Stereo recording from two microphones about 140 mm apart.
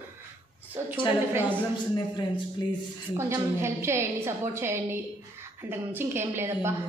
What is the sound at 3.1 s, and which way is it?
A woman's voice, 20° right (ahead or behind).